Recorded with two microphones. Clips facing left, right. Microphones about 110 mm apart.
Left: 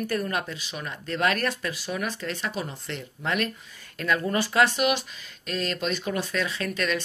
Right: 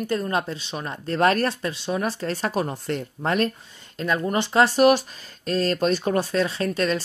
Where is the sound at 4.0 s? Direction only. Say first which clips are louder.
Right 2 dB; 25° right (ahead or behind).